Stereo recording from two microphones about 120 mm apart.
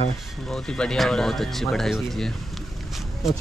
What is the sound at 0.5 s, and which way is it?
Speech, 5° left (ahead or behind).